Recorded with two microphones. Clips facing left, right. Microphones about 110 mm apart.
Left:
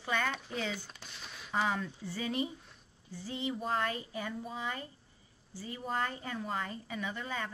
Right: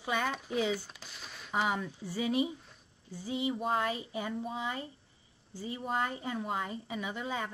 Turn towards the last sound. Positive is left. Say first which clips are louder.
# right 2 dB
turn(degrees=-15)  # may be behind; listen again after turning